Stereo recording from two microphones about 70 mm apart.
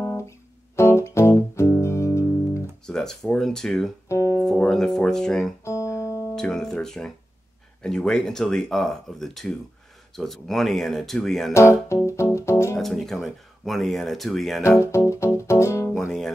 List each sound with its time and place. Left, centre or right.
0.0 s guitar: left
0.7 s music: left
2.9 s speech: centre
5.6 s music: left
6.3 s speech: centre
11.5 s speech: left
12.1 s music: left
12.7 s speech: centre
14.8 s music: left